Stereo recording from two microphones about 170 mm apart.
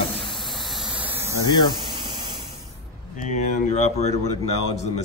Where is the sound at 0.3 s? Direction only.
Centre (ahead or behind).